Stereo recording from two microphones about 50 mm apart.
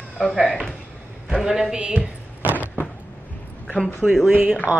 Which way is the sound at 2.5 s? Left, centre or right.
Left.